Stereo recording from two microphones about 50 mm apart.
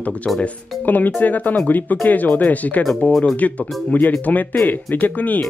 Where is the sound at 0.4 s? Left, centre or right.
Left.